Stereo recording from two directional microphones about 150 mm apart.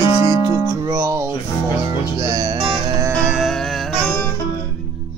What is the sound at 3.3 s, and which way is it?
Music, centre (ahead or behind).